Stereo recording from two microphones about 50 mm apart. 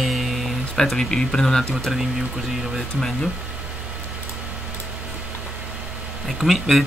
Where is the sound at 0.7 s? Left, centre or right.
Centre.